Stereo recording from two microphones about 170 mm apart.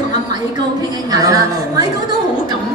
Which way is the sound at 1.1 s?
20° right (ahead or behind).